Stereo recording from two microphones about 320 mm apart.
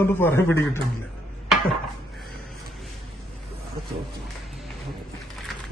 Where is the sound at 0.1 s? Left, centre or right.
Centre.